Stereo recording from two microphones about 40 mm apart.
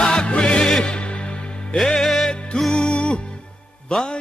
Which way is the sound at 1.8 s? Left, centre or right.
Centre.